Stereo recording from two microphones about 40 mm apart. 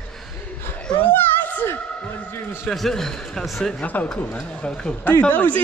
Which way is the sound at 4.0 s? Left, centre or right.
Left.